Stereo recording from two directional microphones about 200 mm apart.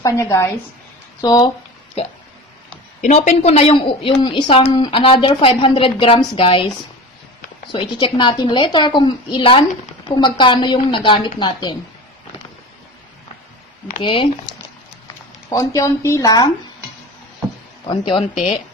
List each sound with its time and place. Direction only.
0.0 s a woman's voice: 15° left (ahead or behind)
2.0 s a woman's voice: 30° left (ahead or behind)
7.7 s a woman's voice: 25° left (ahead or behind)
14.0 s a woman's voice: 25° left (ahead or behind)
15.5 s speech: 15° left (ahead or behind)
17.8 s a woman's voice: 25° left (ahead or behind)